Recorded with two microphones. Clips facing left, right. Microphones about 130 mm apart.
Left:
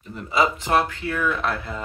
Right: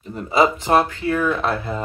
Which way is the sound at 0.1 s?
40° right (ahead or behind).